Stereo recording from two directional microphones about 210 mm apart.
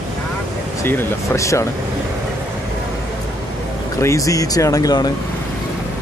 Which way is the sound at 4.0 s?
15° left (ahead or behind).